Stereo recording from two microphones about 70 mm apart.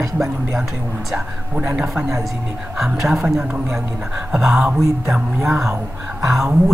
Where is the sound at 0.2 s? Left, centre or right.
Centre.